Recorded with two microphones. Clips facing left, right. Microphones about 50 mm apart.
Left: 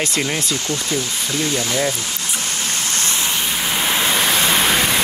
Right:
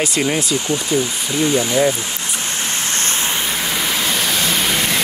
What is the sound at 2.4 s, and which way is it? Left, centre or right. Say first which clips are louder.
Vehicle: right 2 dB; right.